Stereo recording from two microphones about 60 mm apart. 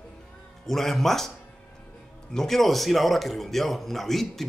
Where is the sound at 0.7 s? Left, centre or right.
Centre.